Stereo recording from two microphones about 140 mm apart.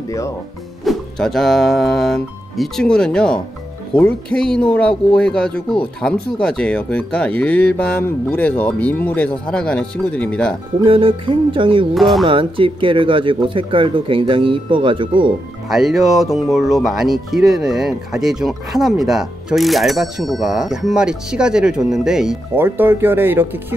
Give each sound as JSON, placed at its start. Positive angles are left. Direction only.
{"t": 0.8, "sound": "speech", "side_deg": 0}
{"t": 10.8, "sound": "speech", "side_deg": -40}
{"t": 11.9, "sound": "speech", "side_deg": 0}
{"t": 12.3, "sound": "speech", "side_deg": -40}
{"t": 15.7, "sound": "speech", "side_deg": 0}
{"t": 22.6, "sound": "speech", "side_deg": -15}